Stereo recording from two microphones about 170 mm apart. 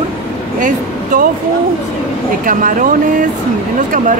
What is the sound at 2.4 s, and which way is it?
Speech, 55° right (ahead or behind).